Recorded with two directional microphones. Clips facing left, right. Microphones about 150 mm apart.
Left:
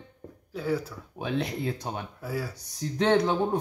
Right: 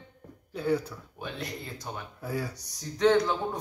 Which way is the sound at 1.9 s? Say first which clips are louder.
Left 4 dB; 20° left (ahead or behind).